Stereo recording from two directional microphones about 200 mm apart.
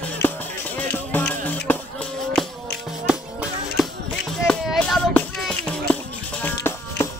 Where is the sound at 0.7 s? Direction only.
10° left (ahead or behind).